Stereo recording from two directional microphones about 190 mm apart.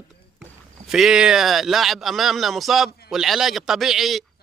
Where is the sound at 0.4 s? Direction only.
Centre (ahead or behind).